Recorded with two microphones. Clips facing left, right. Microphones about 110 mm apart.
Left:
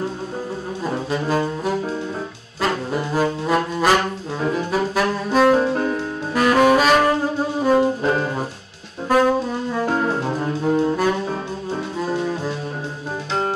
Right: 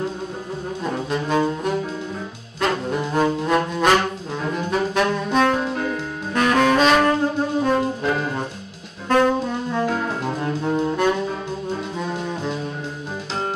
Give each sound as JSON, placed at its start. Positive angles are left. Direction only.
{"t": 0.8, "sound": "brass instrument", "side_deg": 5}
{"t": 4.5, "sound": "saxophone", "side_deg": 5}
{"t": 5.6, "sound": "music", "side_deg": 40}
{"t": 6.3, "sound": "saxophone", "side_deg": 5}
{"t": 8.0, "sound": "brass instrument", "side_deg": 40}
{"t": 9.1, "sound": "brass instrument", "side_deg": 5}
{"t": 10.6, "sound": "saxophone", "side_deg": 5}
{"t": 12.0, "sound": "brass instrument", "side_deg": 5}